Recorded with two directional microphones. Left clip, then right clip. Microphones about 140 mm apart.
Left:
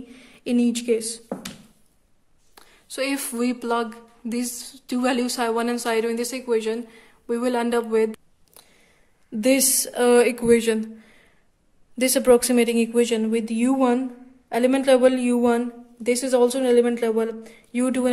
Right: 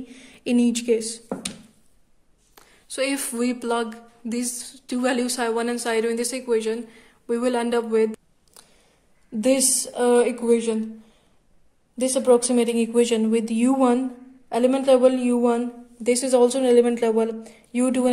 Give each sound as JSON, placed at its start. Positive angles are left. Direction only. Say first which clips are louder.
{"t": 0.1, "sound": "speech", "louder": "right 1 dB", "side_deg": -10}
{"t": 2.5, "sound": "a woman's voice", "louder": "right 1 dB", "side_deg": 5}
{"t": 12.0, "sound": "a woman's voice", "louder": "left 1 dB", "side_deg": 20}
{"t": 16.0, "sound": "speech", "louder": "right 1 dB", "side_deg": 0}